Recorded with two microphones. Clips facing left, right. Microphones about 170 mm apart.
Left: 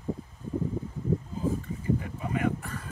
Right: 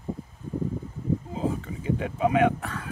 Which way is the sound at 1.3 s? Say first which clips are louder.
Right 2 dB; 75° right (ahead or behind).